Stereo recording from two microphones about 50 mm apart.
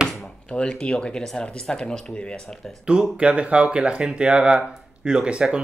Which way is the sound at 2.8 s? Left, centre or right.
Centre.